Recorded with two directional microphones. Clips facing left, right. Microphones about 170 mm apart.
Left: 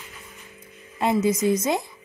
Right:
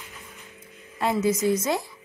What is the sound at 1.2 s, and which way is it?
Speech, 20° left (ahead or behind).